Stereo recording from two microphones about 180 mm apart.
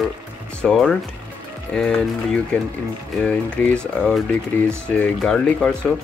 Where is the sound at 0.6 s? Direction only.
5° left (ahead or behind).